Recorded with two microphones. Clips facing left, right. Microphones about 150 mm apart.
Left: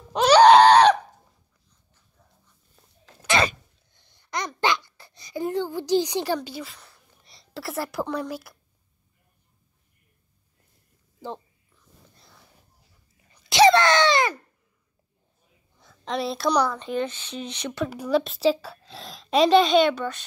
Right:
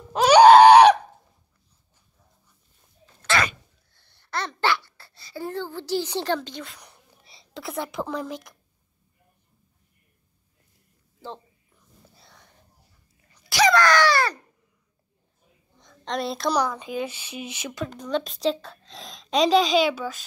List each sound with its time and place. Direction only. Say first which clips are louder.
0.1 s screaming: right 2 dB; 5° right (ahead or behind)
3.3 s sneeze: left 3 dB; 20° left (ahead or behind)
4.6 s a sound: even; 15° left (ahead or behind)
7.2 s a woman's voice: left 1 dB; centre (ahead or behind)
11.1 s a sound: left 3 dB; 15° left (ahead or behind)
12.1 s sniff: right 1 dB; centre (ahead or behind)
13.3 s a sound: left 4 dB; 25° left (ahead or behind)
15.8 s a woman's voice: left 1 dB; 5° left (ahead or behind)
17.8 s a woman's voice: left 4 dB; 10° left (ahead or behind)